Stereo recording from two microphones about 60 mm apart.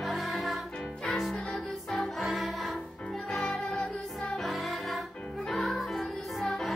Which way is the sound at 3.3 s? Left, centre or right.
Centre.